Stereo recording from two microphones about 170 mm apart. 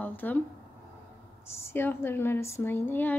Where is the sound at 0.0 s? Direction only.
10° left (ahead or behind).